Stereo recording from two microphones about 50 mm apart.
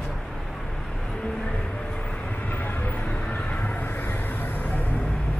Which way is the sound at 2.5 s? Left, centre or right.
Left.